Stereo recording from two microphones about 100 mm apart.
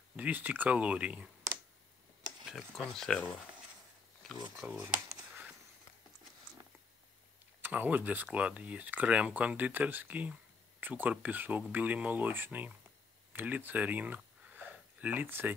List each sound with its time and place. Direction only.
0.1 s speech: 15° right (ahead or behind)
2.4 s speech: centre (ahead or behind)
4.2 s a sound: 5° left (ahead or behind)
4.8 s speech: 30° right (ahead or behind)
7.6 s speech: 15° right (ahead or behind)
13.3 s a sound: 20° right (ahead or behind)